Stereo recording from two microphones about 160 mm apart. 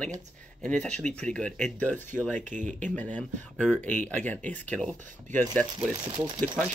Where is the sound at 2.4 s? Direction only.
50° right (ahead or behind).